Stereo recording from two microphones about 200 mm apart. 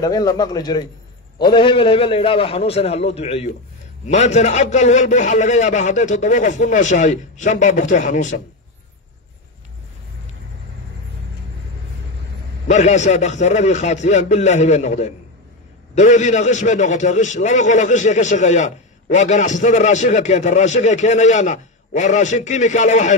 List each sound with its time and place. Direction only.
0.0 s a man's voice: 20° left (ahead or behind); by 8.4 s 40° left (ahead or behind)
12.6 s a man's voice: 35° left (ahead or behind)